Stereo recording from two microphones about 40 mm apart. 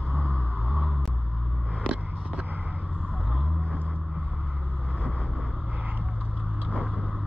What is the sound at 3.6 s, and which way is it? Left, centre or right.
Vehicle, left.